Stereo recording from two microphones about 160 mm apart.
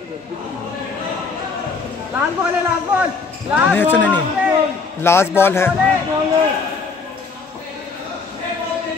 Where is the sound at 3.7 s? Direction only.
10° left (ahead or behind).